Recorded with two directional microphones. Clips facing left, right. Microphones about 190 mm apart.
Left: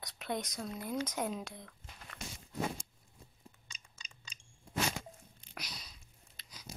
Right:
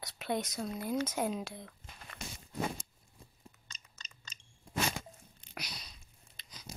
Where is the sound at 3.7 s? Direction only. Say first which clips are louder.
Even; 10° left (ahead or behind).